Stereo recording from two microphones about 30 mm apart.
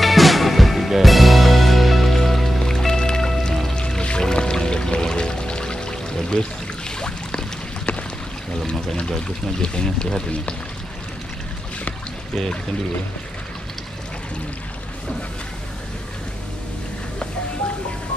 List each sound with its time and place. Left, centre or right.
0.0 s music: centre
2.6 s music: centre
7.0 s boat: left
9.6 s speech: left